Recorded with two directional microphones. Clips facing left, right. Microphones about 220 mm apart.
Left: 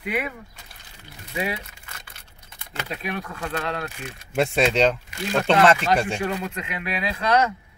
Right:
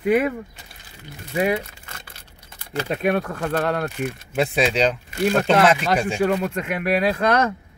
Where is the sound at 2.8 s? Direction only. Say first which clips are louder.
Right 9 dB; 50° right (ahead or behind).